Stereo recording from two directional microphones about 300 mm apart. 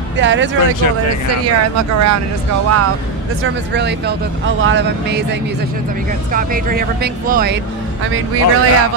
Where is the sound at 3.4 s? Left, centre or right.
Right.